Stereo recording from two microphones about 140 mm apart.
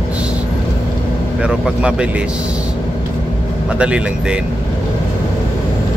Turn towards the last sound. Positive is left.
turn(degrees=-10)  # may be behind; listen again after turning